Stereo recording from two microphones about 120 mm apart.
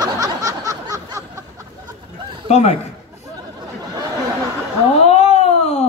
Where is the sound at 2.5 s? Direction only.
65° left (ahead or behind).